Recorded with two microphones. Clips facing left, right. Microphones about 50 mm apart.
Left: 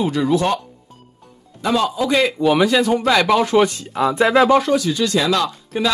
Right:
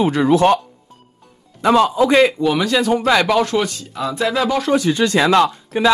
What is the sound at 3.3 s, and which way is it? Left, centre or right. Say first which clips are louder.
Speech: left 2 dB; centre.